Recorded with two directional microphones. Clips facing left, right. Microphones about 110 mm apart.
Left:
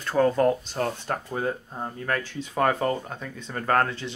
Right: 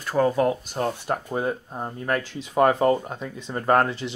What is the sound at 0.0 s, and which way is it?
Speech, 5° right (ahead or behind).